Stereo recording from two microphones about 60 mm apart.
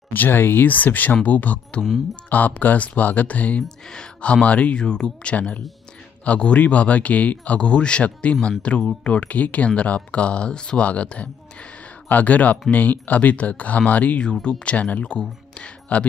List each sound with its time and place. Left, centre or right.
0.1 s speech: left
3.6 s speech: centre
14.2 s speech: centre